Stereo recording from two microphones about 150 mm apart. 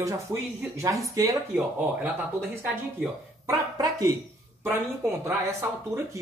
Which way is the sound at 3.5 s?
25° right (ahead or behind).